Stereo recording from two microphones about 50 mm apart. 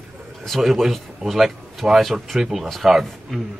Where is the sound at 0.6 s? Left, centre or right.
Centre.